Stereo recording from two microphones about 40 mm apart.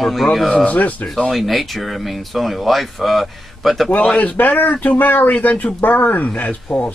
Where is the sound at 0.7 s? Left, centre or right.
Left.